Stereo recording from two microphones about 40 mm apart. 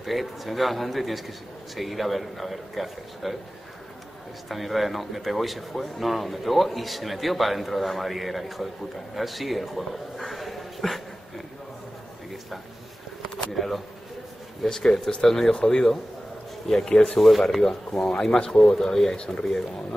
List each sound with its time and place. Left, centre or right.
0.0 s speech: centre
4.5 s speech: centre
13.6 s speech: centre
17.2 s speech: centre